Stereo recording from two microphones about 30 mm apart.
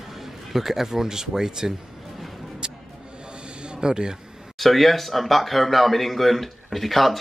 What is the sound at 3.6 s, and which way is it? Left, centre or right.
Speech, right.